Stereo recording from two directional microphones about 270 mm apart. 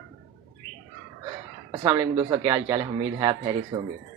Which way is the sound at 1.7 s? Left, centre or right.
Centre.